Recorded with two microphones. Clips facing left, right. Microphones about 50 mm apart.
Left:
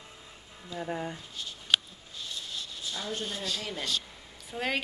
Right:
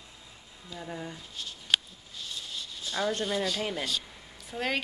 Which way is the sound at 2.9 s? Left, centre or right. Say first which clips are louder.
Right 7 dB; right.